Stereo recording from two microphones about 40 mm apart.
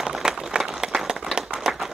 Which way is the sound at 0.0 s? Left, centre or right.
Centre.